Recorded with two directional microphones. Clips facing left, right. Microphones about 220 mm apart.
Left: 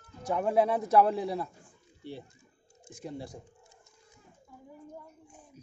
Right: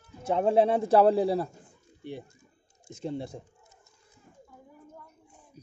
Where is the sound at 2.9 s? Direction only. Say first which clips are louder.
Right 6 dB; 25° right (ahead or behind).